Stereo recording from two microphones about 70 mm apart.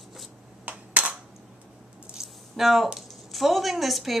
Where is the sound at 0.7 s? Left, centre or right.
Centre.